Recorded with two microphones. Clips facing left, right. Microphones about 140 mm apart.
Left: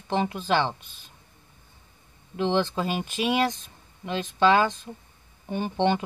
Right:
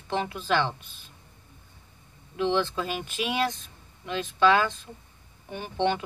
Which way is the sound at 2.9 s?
35° left (ahead or behind).